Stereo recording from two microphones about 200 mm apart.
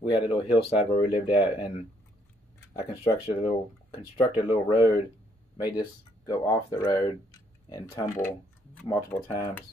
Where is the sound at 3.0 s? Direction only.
30° left (ahead or behind).